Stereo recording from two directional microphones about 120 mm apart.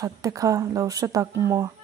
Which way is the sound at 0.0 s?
30° right (ahead or behind).